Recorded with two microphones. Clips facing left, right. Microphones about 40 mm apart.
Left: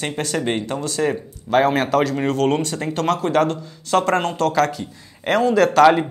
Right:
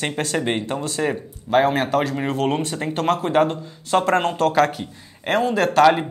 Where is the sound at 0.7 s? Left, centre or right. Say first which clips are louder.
Left 1 dB; right.